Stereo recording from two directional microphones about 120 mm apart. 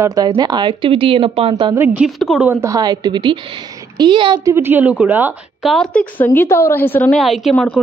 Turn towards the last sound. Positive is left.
turn(degrees=0)  # may be behind; listen again after turning